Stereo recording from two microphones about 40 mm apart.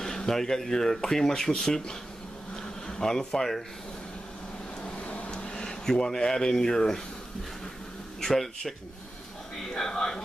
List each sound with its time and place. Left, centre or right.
0.0 s speech: centre
2.5 s bee: centre
4.8 s a sound: left
5.5 s speech: centre
8.2 s speech: centre